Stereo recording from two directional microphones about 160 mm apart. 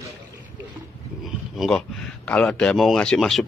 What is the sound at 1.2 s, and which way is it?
Speech, centre (ahead or behind).